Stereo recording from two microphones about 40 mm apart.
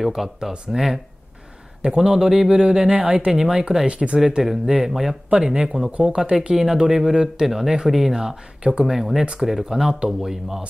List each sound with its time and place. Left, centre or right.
0.0 s speech: centre
2.6 s speech: right
3.3 s speech: centre
3.8 s speech: right
4.4 s speech: centre; by 6.5 s right
6.5 s speech: centre
8.8 s speech: centre